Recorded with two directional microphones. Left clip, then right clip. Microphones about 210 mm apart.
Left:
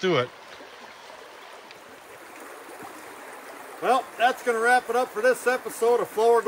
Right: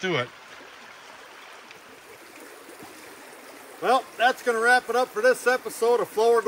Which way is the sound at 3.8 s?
Centre (ahead or behind).